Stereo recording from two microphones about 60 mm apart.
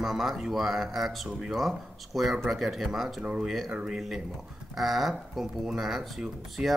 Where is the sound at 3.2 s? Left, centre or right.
Centre.